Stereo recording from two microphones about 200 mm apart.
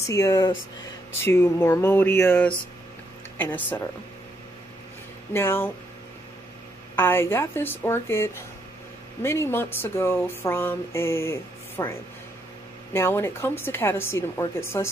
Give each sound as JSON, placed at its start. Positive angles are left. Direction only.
{"t": 0.0, "sound": "speech", "side_deg": 15}
{"t": 5.3, "sound": "speech", "side_deg": 10}
{"t": 7.0, "sound": "speech", "side_deg": 10}
{"t": 12.9, "sound": "speech", "side_deg": 10}